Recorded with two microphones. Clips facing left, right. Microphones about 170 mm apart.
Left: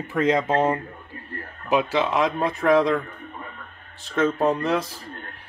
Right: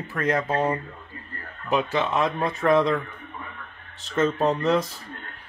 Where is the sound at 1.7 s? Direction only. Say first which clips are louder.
Left 2 dB; 10° left (ahead or behind).